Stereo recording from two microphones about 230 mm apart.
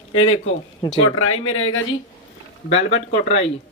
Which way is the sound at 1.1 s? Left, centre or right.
Left.